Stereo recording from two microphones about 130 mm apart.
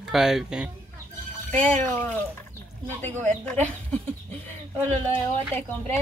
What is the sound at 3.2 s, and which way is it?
Speech, 10° left (ahead or behind).